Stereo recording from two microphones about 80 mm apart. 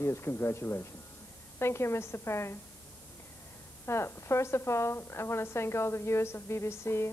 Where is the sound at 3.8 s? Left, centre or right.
Left.